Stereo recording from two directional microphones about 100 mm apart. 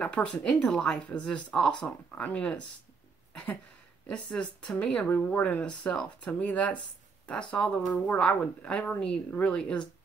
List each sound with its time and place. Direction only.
0.0 s speech: 10° left (ahead or behind)
4.3 s speech: 10° left (ahead or behind)